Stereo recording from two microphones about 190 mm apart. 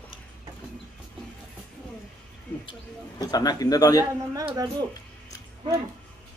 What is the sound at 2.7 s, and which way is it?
Speech, 20° left (ahead or behind).